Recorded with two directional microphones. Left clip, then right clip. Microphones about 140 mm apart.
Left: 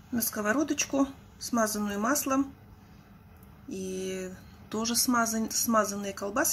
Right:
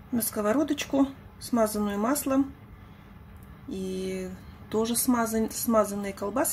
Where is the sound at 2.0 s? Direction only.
20° right (ahead or behind).